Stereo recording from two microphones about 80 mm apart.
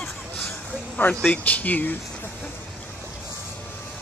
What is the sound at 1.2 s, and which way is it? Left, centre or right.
Speech, centre.